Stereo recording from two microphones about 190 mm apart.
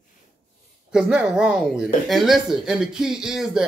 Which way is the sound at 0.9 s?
5° right (ahead or behind).